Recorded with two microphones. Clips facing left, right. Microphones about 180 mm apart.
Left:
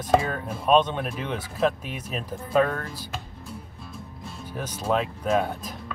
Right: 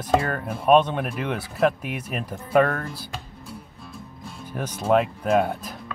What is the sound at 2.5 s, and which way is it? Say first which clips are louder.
Speech: right 3 dB; 65° right (ahead or behind).